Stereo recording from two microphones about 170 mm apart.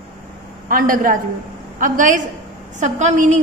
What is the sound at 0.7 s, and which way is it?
A man's voice, 55° right (ahead or behind).